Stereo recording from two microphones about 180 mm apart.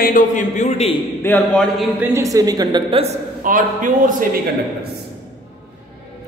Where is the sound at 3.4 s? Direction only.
45° right (ahead or behind).